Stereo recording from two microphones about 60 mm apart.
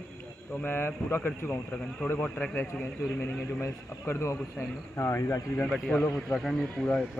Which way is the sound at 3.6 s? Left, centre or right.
Left.